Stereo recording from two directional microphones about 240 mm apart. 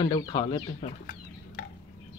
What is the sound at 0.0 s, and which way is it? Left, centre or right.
Speech, centre.